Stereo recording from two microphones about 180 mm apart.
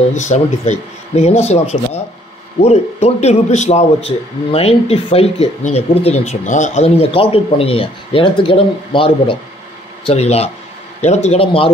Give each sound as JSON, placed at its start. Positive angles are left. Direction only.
{"t": 0.1, "sound": "speech", "side_deg": 40}